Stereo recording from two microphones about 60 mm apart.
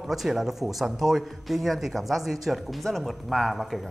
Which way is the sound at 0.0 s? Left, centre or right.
Centre.